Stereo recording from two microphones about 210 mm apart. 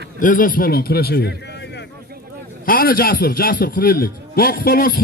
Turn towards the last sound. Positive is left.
turn(degrees=45)  # may be behind; listen again after turning